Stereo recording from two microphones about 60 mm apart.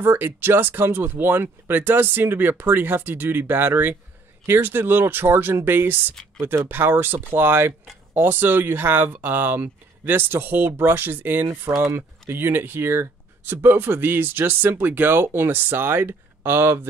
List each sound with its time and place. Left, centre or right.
0.0 s speech: right
11.7 s speech: right
12.3 s speech: right